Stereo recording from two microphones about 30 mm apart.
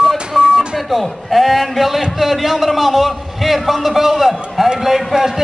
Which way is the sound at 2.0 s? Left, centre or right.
Centre.